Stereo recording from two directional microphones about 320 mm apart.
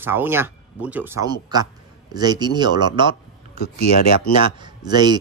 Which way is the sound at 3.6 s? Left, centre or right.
Left.